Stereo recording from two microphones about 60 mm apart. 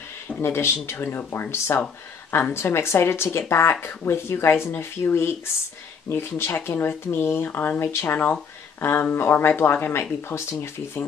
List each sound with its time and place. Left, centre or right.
0.4 s speech: left
10.2 s speech: left